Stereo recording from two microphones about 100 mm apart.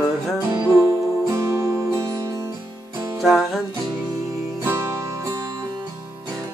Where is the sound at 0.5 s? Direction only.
40° right (ahead or behind).